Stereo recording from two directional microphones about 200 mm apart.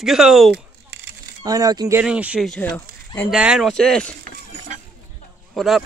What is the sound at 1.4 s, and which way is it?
Speech, 20° right (ahead or behind).